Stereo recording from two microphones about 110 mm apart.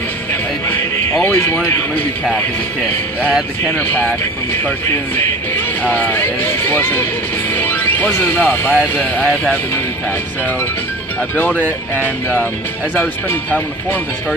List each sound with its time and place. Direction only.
1.1 s speech: 15° left (ahead or behind)
3.3 s speech: 5° right (ahead or behind)
3.7 s speech: 15° left (ahead or behind)
11.1 s speech: 15° left (ahead or behind)